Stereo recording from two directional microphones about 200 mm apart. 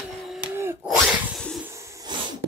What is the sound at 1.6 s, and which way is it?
Wheeze, 15° right (ahead or behind).